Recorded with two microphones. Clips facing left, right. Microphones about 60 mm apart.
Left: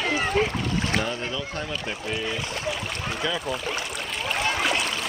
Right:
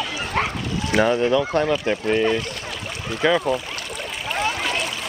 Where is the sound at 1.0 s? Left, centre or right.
Right.